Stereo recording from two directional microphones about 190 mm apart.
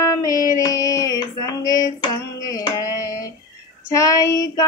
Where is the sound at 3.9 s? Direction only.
15° left (ahead or behind).